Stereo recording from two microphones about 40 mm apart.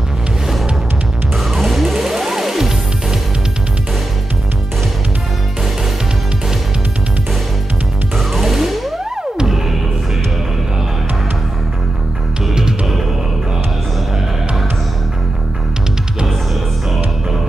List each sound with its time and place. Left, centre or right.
1.4 s music: centre
8.2 s music: centre
12.5 s music: centre